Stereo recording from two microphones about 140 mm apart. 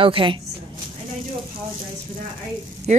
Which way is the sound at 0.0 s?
40° right (ahead or behind).